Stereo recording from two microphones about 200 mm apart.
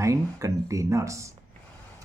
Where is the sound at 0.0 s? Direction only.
15° right (ahead or behind).